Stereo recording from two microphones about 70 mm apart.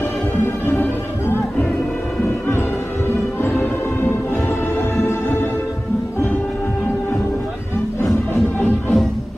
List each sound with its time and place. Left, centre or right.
3.4 s music: left
8.5 s music: left